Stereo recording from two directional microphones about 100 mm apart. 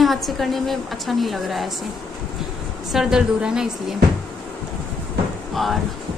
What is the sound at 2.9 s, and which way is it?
Speech, 5° right (ahead or behind).